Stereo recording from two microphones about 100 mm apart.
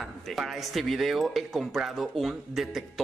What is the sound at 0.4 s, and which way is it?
Speech, centre (ahead or behind).